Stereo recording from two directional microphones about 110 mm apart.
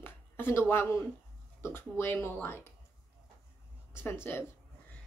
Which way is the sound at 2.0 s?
20° left (ahead or behind).